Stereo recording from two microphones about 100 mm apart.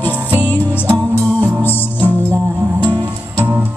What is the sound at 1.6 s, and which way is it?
Music, 20° left (ahead or behind).